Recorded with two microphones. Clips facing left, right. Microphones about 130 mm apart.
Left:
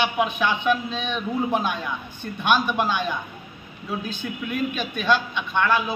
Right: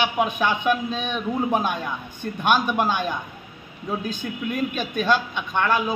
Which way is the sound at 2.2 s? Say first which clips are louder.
Right 1 dB; 45° right (ahead or behind).